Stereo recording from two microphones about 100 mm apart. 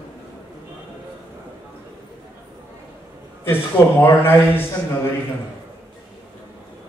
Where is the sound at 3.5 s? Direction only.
20° left (ahead or behind).